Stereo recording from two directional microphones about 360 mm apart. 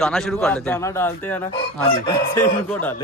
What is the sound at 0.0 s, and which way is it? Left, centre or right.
Speech, centre.